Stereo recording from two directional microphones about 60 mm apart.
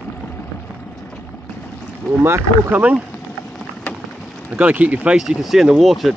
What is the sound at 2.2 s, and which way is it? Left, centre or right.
Speech, right.